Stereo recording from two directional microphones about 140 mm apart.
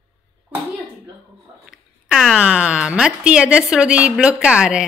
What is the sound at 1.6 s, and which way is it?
Speech, centre (ahead or behind).